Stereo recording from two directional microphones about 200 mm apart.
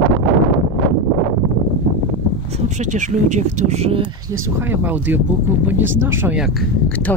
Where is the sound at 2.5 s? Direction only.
35° right (ahead or behind).